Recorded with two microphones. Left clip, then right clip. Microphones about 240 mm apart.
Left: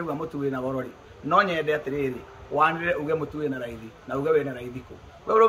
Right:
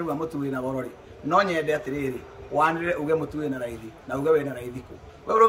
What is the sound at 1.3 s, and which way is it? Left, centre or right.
A man's voice, centre.